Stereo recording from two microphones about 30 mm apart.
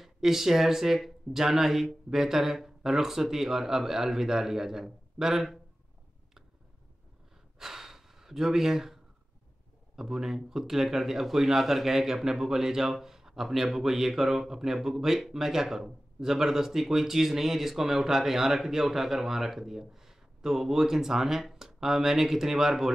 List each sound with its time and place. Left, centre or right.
0.0 s speech: centre
7.5 s gasp: centre
9.9 s speech: centre